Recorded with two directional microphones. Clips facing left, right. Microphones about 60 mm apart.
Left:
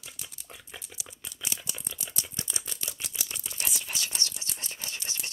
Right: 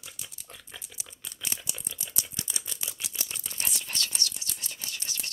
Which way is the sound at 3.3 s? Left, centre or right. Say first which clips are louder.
Left 1 dB; centre.